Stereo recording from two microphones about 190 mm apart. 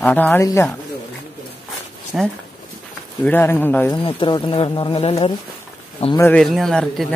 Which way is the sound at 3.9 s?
30° left (ahead or behind).